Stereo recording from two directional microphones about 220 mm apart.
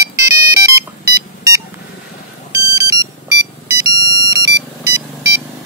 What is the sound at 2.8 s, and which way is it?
Ringtone, 15° right (ahead or behind).